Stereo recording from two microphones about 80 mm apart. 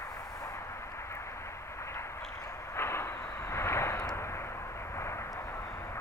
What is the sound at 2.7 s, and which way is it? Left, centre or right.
Vehicle, left.